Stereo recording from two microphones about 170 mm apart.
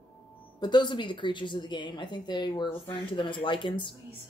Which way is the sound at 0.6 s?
25° left (ahead or behind).